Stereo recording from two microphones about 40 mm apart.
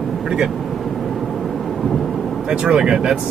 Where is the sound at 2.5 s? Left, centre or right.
Right.